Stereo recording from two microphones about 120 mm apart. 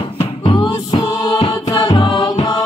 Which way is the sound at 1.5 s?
30° left (ahead or behind).